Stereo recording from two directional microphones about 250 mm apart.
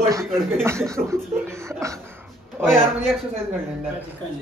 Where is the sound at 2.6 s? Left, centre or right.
Centre.